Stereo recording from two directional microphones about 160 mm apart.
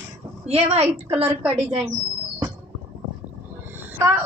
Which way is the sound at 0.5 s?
40° right (ahead or behind).